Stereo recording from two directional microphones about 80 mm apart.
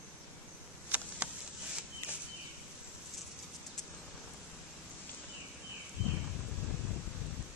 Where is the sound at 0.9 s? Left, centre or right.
Right.